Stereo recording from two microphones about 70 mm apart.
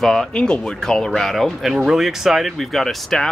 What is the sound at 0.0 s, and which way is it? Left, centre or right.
Speech, centre.